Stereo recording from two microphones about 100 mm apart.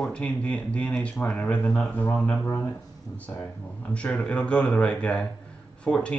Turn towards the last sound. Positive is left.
turn(degrees=10)  # may be behind; listen again after turning